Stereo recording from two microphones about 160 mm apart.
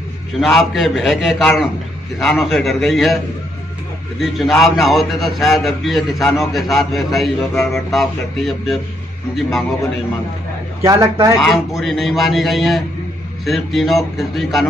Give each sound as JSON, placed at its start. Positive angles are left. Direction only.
{"t": 0.4, "sound": "a man's voice", "side_deg": 0}
{"t": 4.2, "sound": "a man's voice", "side_deg": 0}
{"t": 10.8, "sound": "speech", "side_deg": -20}
{"t": 11.4, "sound": "a man's voice", "side_deg": 0}